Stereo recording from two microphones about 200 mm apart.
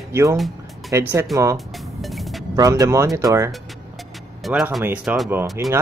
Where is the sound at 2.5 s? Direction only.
15° right (ahead or behind).